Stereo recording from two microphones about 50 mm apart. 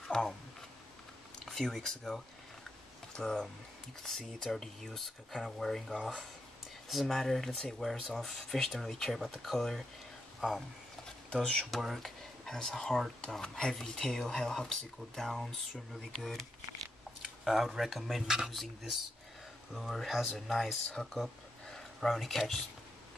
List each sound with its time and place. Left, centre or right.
0.1 s a sound: centre
1.4 s speech: centre
10.4 s speech: centre
11.2 s speech: centre
11.7 s speech: centre
15.7 s speech: centre
19.7 s speech: centre
20.9 s speech: centre